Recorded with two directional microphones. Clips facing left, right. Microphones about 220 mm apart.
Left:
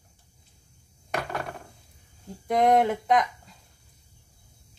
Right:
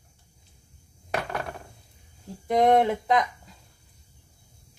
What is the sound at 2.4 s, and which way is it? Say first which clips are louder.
Speech: right 1 dB; centre (ahead or behind).